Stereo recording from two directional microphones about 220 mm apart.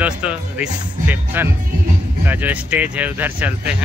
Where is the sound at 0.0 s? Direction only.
5° right (ahead or behind).